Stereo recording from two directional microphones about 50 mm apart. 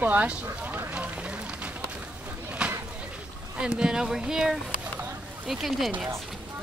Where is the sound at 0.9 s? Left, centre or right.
Right.